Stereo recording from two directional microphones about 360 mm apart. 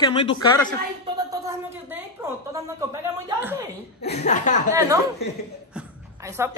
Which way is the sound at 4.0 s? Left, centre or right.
Centre.